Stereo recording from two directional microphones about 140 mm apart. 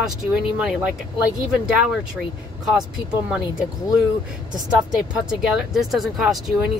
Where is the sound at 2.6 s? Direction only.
5° right (ahead or behind).